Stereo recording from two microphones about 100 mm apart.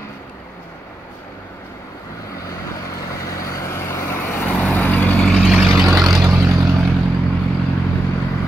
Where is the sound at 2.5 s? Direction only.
35° left (ahead or behind); by 5.2 s 15° left (ahead or behind).